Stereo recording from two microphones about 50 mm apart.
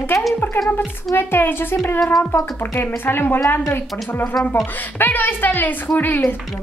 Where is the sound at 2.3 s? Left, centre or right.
Left.